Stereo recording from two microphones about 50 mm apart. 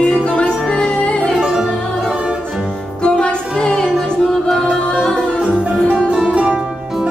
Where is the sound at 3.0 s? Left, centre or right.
Centre.